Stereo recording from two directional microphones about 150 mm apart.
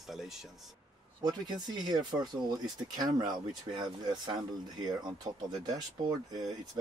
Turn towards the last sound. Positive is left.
turn(degrees=-25)  # may be behind; listen again after turning